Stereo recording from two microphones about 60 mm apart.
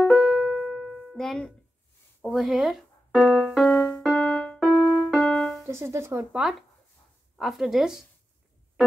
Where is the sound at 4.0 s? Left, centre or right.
Centre.